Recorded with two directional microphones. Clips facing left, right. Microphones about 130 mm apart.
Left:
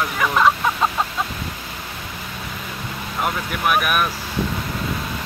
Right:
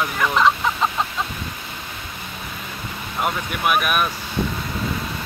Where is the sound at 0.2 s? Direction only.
5° left (ahead or behind).